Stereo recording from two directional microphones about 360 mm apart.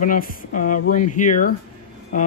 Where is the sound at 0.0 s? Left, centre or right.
Left.